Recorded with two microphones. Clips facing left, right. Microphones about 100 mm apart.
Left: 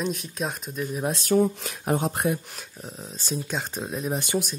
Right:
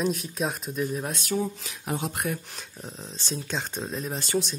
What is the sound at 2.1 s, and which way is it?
Speech, 25° left (ahead or behind).